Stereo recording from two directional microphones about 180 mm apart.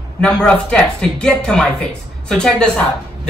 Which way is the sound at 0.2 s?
5° left (ahead or behind).